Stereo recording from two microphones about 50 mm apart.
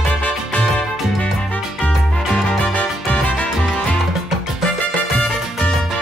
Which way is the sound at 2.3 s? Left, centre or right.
Left.